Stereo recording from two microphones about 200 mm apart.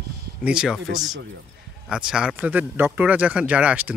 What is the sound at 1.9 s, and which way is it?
Speech, 5° right (ahead or behind).